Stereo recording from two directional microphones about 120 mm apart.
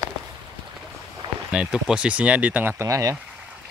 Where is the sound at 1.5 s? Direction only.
5° right (ahead or behind); by 3.1 s 25° right (ahead or behind).